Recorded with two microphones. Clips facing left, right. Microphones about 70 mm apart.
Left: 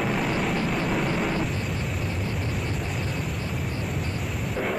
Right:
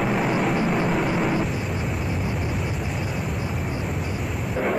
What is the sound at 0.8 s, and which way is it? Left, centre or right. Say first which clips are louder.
Vehicle: right 3 dB; centre.